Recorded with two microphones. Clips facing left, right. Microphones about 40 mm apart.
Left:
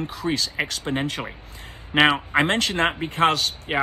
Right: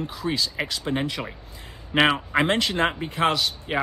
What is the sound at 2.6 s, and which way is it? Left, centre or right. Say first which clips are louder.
Speech: left 1 dB; left.